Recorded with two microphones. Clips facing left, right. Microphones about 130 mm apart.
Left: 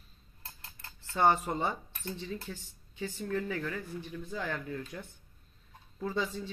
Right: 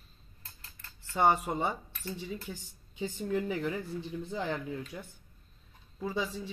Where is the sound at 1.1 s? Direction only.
10° right (ahead or behind).